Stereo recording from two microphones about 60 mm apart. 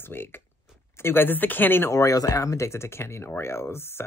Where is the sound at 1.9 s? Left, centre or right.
Left.